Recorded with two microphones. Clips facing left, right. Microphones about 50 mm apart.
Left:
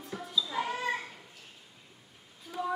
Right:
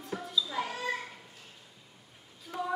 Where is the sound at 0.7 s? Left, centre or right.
Centre.